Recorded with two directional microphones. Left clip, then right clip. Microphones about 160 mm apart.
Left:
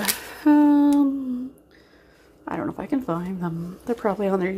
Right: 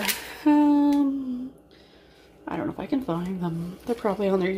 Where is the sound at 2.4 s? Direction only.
5° left (ahead or behind).